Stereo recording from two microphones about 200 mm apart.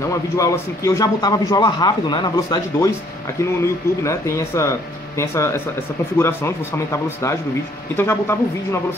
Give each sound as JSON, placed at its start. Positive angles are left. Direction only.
{"t": 0.1, "sound": "a man's voice", "side_deg": 15}
{"t": 4.0, "sound": "speech", "side_deg": 15}